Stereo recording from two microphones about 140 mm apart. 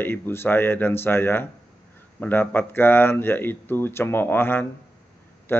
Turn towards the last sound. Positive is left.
turn(degrees=15)  # may be behind; listen again after turning